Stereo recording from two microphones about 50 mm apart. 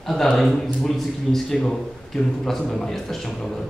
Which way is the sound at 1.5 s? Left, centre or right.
Centre.